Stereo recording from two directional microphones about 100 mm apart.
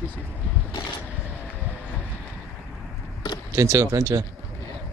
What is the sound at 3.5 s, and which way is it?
Speech, 35° right (ahead or behind).